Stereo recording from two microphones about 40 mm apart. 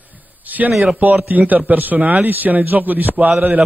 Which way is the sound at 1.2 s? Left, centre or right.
Right.